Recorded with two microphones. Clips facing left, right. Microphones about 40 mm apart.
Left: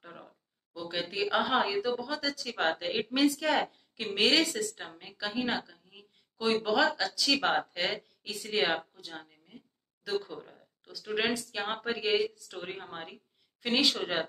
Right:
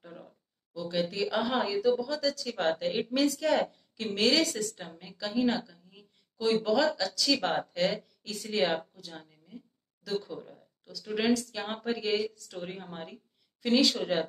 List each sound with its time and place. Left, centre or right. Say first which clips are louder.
0.0 s a woman's voice: right 1 dB; left